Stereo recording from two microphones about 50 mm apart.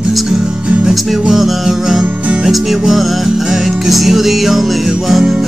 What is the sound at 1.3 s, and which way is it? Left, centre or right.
Music, centre.